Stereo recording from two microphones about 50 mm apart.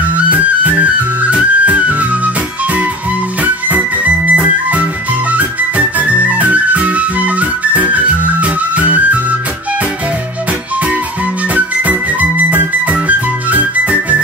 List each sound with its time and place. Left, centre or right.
0.1 s music: right
11.5 s music: right